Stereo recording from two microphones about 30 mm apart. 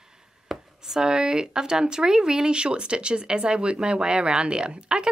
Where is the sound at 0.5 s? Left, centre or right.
Centre.